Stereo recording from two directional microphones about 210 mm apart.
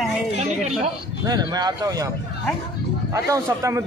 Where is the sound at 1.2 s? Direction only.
20° right (ahead or behind).